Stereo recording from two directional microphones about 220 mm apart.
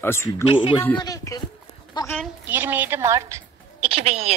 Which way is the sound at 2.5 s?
10° right (ahead or behind).